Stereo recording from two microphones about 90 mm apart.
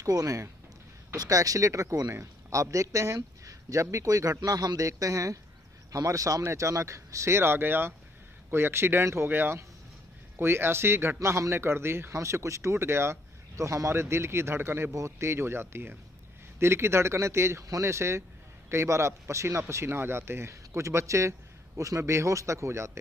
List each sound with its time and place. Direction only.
0.0 s a man's voice: 40° right (ahead or behind)